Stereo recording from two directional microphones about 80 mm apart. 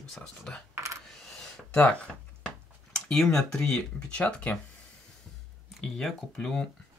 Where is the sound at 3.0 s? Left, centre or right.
Centre.